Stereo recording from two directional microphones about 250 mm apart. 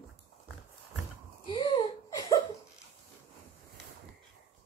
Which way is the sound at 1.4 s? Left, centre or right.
Centre.